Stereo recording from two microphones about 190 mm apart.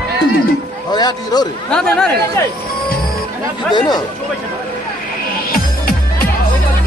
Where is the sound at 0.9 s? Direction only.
20° left (ahead or behind).